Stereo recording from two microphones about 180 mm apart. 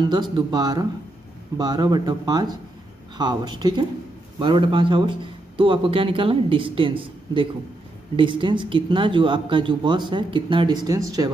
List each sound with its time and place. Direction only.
0.0 s speech: 25° right (ahead or behind)